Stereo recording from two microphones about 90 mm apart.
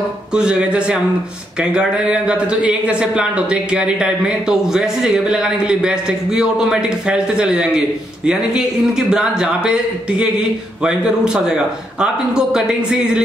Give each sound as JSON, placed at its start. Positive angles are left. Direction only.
{"t": 0.3, "sound": "speech", "side_deg": -10}